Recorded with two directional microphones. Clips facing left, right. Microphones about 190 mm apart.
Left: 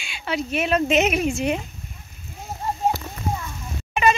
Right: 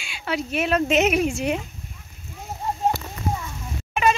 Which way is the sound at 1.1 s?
5° left (ahead or behind).